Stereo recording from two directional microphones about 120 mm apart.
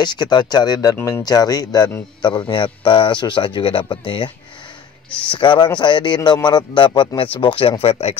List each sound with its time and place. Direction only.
0.0 s a man's voice: 35° left (ahead or behind)
5.1 s speech: 10° left (ahead or behind)
5.4 s a man's voice: 40° left (ahead or behind); by 8.2 s 60° left (ahead or behind)